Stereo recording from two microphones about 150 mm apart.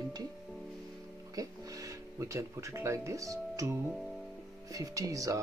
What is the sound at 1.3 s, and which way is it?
Speech, 25° right (ahead or behind).